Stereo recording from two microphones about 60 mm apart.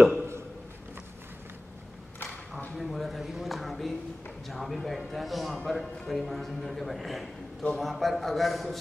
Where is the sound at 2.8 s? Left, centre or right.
Centre.